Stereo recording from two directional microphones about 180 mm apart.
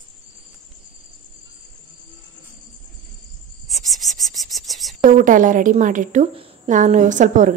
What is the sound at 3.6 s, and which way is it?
Cricket, centre (ahead or behind).